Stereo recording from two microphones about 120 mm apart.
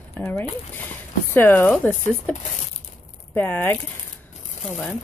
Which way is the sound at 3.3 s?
15° left (ahead or behind).